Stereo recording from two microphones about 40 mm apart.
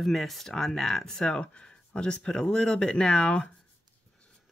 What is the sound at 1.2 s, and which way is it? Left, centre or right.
Speech, left.